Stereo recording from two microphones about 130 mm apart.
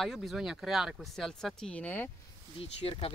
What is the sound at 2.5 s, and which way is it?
Speech, 45° left (ahead or behind).